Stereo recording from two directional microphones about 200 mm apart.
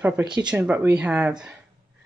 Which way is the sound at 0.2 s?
20° right (ahead or behind).